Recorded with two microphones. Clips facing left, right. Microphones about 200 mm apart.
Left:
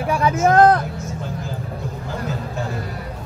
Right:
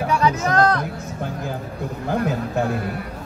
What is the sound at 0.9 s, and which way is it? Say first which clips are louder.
Vehicle: even; 60° right (ahead or behind).